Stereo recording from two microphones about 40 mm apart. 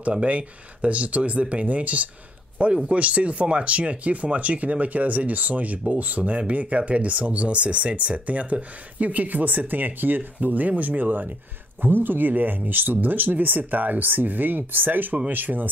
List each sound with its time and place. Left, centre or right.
0.0 s speech: right